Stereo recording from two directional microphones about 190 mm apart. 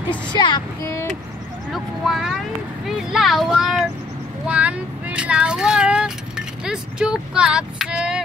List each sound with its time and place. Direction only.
0.3 s child singing: 25° left (ahead or behind)
1.7 s speech: centre (ahead or behind)
4.5 s vehicle: 5° right (ahead or behind)